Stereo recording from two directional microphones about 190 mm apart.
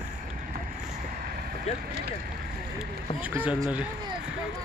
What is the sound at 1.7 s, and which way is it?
Speech, 35° left (ahead or behind).